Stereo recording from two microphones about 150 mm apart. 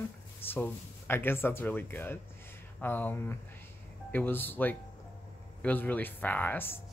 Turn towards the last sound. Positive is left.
turn(degrees=15)  # may be behind; listen again after turning